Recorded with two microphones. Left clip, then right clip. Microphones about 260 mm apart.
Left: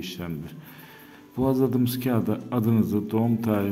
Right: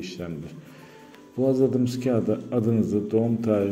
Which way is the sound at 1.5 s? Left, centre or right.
Centre.